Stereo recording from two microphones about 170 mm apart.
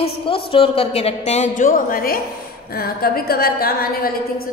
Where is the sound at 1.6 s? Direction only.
55° left (ahead or behind).